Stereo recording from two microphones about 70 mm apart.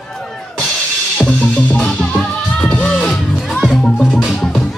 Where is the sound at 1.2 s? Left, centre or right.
Centre.